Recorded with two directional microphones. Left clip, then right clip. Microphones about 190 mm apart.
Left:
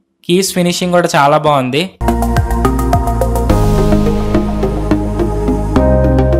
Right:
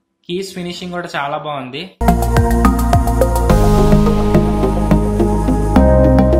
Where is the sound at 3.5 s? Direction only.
Centre (ahead or behind).